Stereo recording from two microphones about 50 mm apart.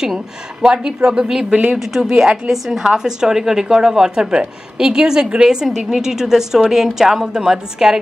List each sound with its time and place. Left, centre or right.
0.6 s a woman's voice: centre